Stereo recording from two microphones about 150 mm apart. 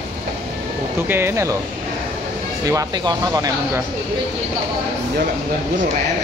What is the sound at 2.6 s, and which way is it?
Speech, 20° right (ahead or behind).